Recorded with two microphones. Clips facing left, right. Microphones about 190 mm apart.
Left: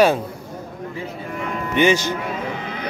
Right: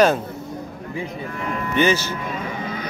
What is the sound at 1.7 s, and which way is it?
Speech, 15° left (ahead or behind).